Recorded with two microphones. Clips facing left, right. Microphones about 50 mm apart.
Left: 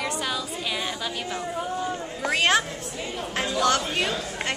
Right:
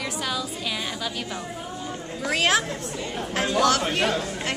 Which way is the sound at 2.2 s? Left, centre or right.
Centre.